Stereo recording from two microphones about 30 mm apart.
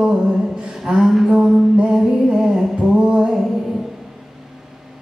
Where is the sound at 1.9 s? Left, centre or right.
Centre.